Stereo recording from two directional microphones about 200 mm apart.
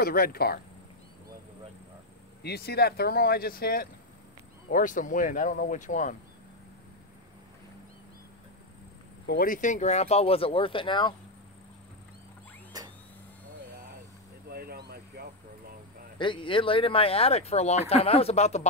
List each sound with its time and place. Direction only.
0.0 s speech: 50° left (ahead or behind)
2.4 s speech: 55° left (ahead or behind)
9.2 s speech: 50° left (ahead or behind); by 11.1 s 25° left (ahead or behind)
14.5 s vehicle: 50° right (ahead or behind)
16.2 s speech: 25° left (ahead or behind)